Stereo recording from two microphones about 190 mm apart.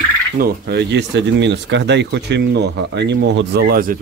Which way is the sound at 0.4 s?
60° right (ahead or behind).